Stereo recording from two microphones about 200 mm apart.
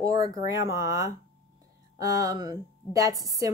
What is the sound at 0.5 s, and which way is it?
A woman's voice, 15° right (ahead or behind).